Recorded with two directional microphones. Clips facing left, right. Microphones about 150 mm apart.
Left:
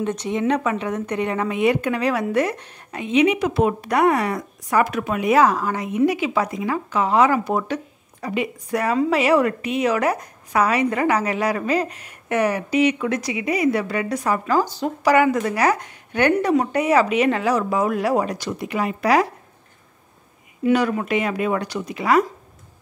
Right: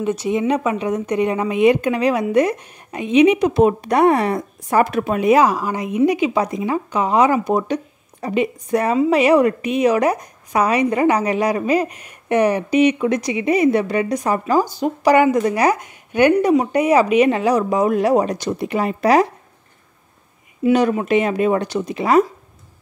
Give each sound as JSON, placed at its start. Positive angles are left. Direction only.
{"t": 0.0, "sound": "a woman's voice", "side_deg": -10}
{"t": 5.3, "sound": "speech", "side_deg": -15}
{"t": 20.7, "sound": "speech", "side_deg": -20}